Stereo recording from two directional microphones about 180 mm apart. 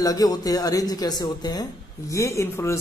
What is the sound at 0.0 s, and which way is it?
A man's voice, 20° left (ahead or behind).